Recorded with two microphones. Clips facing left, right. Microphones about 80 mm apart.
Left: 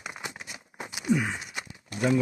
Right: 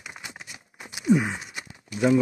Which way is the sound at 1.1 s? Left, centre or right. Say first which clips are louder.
Right 5 dB; centre.